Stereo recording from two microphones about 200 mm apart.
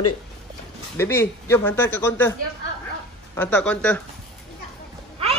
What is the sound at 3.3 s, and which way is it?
Speech, 10° left (ahead or behind).